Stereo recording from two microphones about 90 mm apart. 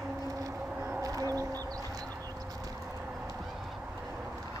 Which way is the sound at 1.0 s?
40° right (ahead or behind).